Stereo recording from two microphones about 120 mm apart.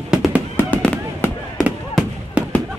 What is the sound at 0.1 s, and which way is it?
Fireworks, 5° right (ahead or behind).